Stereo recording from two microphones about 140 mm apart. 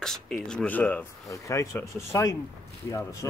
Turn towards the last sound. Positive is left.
turn(degrees=20)  # may be behind; listen again after turning